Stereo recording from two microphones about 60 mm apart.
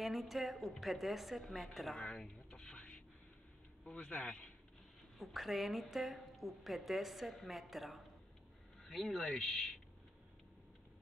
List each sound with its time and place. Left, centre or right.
0.0 s a woman's voice: centre
2.0 s speech: centre
2.7 s a sound: left
3.8 s speech: centre
5.2 s a woman's voice: centre